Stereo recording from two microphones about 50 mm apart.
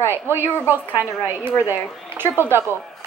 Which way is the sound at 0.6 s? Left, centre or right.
Right.